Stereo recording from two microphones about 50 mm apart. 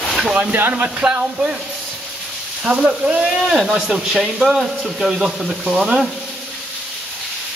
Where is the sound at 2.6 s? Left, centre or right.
Centre.